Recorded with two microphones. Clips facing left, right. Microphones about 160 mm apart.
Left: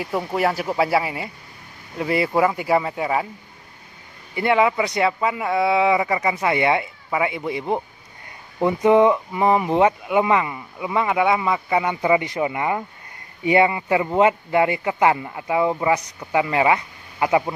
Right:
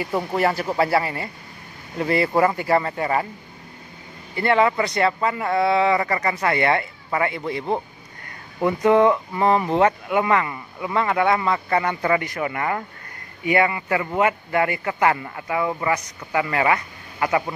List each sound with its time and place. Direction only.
0.0 s speech: centre (ahead or behind)
4.4 s speech: 10° left (ahead or behind)